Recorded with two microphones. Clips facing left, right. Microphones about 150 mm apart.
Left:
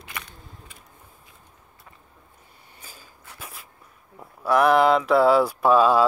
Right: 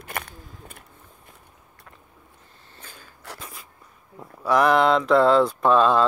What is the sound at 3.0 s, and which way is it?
Rub, 80° right.